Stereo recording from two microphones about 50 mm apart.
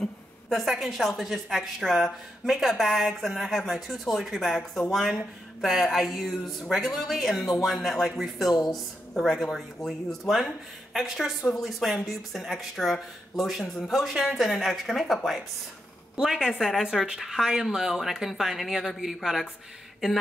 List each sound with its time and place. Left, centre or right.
0.5 s speech: centre
9.8 s speech: centre
10.3 s speech: centre